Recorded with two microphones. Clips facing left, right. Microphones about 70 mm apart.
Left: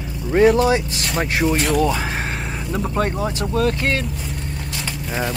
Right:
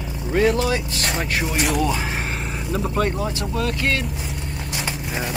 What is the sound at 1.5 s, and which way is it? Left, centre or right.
Speech, centre.